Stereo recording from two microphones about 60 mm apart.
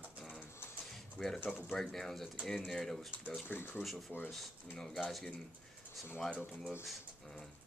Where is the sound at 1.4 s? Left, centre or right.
Left.